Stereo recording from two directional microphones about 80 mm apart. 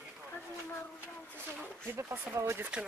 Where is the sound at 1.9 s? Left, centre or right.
Right.